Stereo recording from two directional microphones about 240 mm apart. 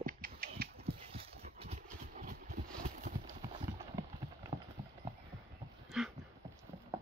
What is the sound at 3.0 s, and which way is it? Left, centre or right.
Clip-clop, right.